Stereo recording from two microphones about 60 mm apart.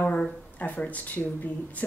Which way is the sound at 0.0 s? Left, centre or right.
Left.